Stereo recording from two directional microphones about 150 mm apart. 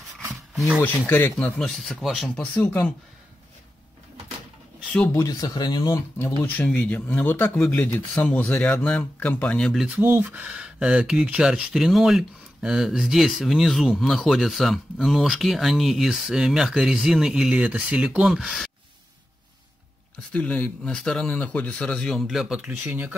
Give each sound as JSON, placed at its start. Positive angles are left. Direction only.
{"t": 0.6, "sound": "speech", "side_deg": 0}
{"t": 0.8, "sound": "speech", "side_deg": 15}
{"t": 1.3, "sound": "speech", "side_deg": 0}
{"t": 5.1, "sound": "speech", "side_deg": 25}
{"t": 6.4, "sound": "speech", "side_deg": 10}
{"t": 9.8, "sound": "speech", "side_deg": -15}
{"t": 20.3, "sound": "speech", "side_deg": 10}